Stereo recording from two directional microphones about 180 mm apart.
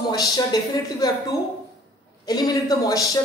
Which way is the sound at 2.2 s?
20° left (ahead or behind).